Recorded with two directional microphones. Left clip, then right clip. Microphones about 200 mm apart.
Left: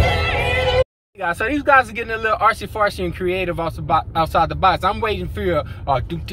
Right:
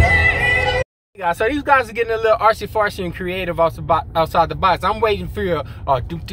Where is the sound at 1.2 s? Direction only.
20° right (ahead or behind).